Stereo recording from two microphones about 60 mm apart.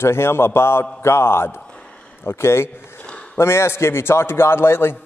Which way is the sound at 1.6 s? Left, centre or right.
Centre.